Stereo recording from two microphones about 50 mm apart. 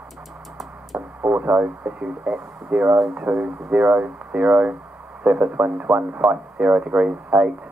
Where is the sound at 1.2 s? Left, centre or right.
Right.